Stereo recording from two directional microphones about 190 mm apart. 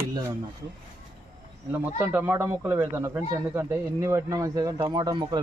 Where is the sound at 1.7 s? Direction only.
10° right (ahead or behind).